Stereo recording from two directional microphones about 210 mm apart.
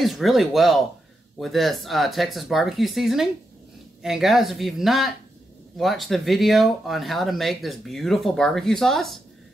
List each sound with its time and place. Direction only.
0.0 s speech: centre (ahead or behind)